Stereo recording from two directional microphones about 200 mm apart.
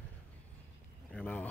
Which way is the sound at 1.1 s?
5° left (ahead or behind).